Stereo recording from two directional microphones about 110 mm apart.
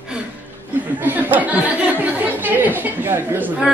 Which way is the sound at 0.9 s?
15° right (ahead or behind).